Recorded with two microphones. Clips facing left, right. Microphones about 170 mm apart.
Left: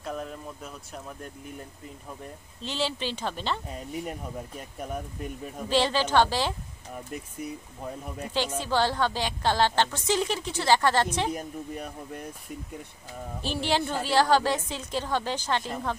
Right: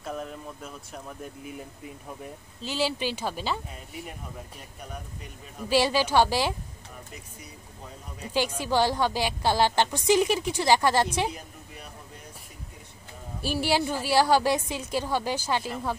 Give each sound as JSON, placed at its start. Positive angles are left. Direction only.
{"t": 0.0, "sound": "speech", "side_deg": 0}
{"t": 2.6, "sound": "a woman's voice", "side_deg": -10}
{"t": 5.7, "sound": "a woman's voice", "side_deg": -10}
{"t": 8.3, "sound": "a woman's voice", "side_deg": -10}
{"t": 11.3, "sound": "speech", "side_deg": 45}
{"t": 13.4, "sound": "a woman's voice", "side_deg": -10}